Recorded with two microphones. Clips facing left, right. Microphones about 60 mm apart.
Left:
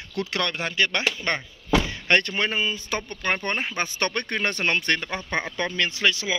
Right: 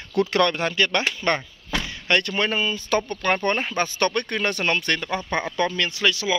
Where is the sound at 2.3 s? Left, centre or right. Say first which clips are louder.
Right 2 dB; centre.